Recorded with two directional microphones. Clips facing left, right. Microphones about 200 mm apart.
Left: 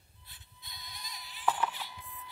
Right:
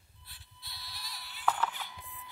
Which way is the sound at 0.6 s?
15° left (ahead or behind).